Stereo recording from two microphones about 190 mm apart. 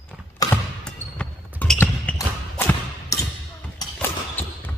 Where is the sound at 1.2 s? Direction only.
5° left (ahead or behind).